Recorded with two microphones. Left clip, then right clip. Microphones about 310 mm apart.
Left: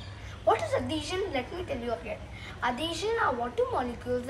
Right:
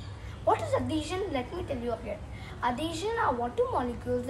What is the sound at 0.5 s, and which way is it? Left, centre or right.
A woman's voice, centre.